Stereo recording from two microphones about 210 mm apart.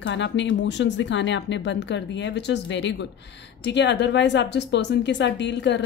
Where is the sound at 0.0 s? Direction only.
60° left (ahead or behind).